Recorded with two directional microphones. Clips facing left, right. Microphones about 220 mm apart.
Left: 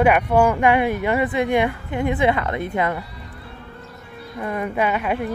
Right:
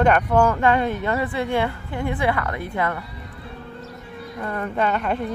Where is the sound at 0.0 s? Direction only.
10° left (ahead or behind).